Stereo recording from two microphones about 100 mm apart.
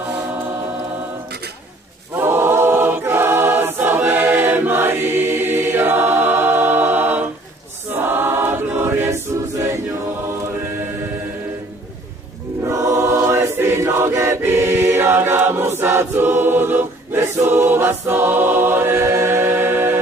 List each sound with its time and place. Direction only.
2.1 s choir: 25° right (ahead or behind)
12.6 s choir: 30° right (ahead or behind)